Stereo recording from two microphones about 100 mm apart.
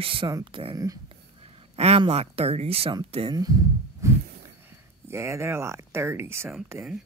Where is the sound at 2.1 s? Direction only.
90° right.